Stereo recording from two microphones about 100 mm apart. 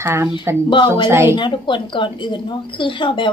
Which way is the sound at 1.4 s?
55° left (ahead or behind).